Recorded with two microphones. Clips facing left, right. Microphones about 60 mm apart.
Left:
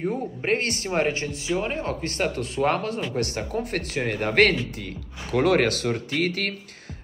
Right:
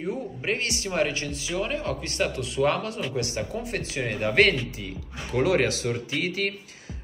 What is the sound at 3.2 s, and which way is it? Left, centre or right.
Speech, left.